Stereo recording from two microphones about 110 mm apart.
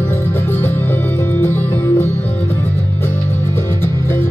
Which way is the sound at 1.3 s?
20° left (ahead or behind).